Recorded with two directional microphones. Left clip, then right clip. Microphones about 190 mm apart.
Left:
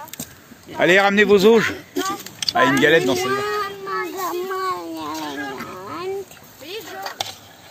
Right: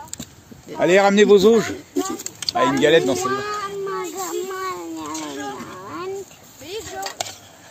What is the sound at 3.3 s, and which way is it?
Baby cry, 55° left (ahead or behind).